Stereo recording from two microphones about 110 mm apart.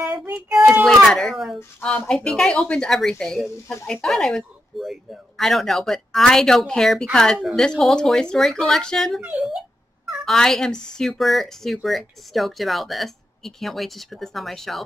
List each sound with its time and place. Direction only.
0.0 s child singing: 20° right (ahead or behind)
0.8 s speech: centre (ahead or behind)
1.8 s a woman's voice: 10° left (ahead or behind)
9.2 s speech: 10° right (ahead or behind)
10.0 s speech: 5° left (ahead or behind)